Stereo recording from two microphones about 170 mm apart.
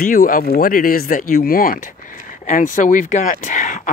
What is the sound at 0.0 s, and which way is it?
Speech, 55° left (ahead or behind).